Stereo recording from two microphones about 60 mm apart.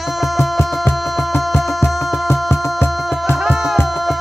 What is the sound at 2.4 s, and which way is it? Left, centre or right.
Music, left.